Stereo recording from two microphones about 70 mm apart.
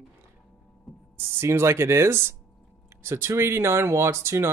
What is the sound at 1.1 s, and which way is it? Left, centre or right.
Speech, right.